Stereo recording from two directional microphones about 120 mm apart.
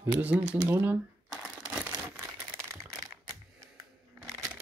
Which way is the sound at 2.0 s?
20° right (ahead or behind).